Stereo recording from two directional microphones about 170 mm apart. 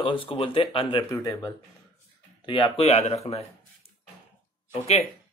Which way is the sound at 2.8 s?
40° left (ahead or behind).